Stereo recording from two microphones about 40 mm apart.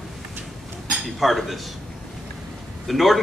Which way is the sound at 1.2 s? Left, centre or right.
Centre.